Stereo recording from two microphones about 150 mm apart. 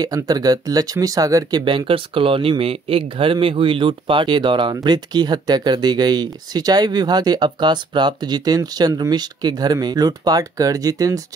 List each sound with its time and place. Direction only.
0.0 s speech: 25° right (ahead or behind)